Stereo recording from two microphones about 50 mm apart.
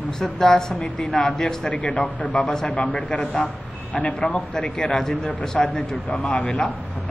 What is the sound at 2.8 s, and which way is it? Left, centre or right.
A man's voice, left.